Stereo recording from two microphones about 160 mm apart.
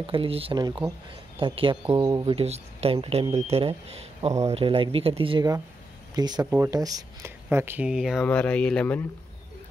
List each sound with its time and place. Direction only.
0.0 s speech: 35° right (ahead or behind)
2.3 s speech: 40° right (ahead or behind); by 6.4 s 25° right (ahead or behind)
6.4 s speech: 15° right (ahead or behind); by 9.0 s 10° left (ahead or behind)